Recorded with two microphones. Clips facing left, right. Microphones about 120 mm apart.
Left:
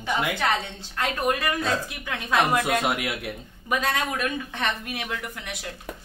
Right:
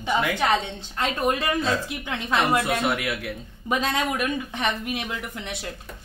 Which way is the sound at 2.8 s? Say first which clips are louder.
Right 1 dB; 20° left (ahead or behind).